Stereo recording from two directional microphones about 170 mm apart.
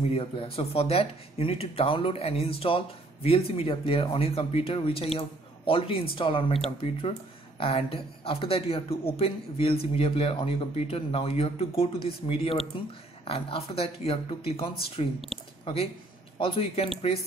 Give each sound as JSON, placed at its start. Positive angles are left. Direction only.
{"t": 0.1, "sound": "speech", "side_deg": 35}